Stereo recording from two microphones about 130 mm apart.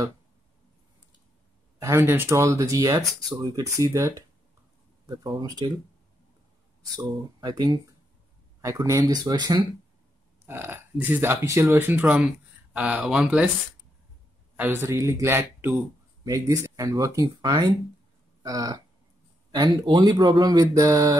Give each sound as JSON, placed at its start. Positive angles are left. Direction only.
{"t": 1.8, "sound": "speech", "side_deg": -20}
{"t": 7.0, "sound": "speech", "side_deg": -30}
{"t": 10.4, "sound": "speech", "side_deg": -15}
{"t": 14.6, "sound": "speech", "side_deg": -15}